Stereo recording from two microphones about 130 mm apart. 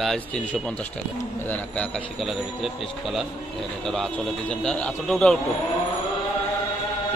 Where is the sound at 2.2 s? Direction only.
Centre (ahead or behind).